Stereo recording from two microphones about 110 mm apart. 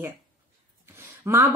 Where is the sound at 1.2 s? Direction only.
25° right (ahead or behind).